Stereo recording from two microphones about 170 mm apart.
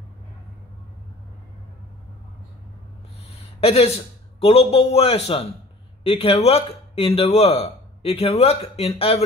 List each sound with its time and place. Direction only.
3.3 s a man's voice: 35° left (ahead or behind)